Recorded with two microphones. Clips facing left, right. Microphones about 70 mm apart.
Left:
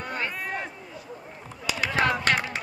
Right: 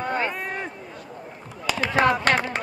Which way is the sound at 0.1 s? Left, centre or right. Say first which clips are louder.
Right 4 dB; right.